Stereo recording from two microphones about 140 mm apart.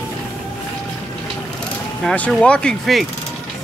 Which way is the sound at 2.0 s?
5° left (ahead or behind).